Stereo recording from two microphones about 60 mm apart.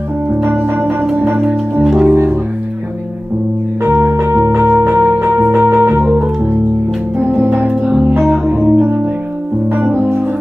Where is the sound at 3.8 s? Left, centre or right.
Right.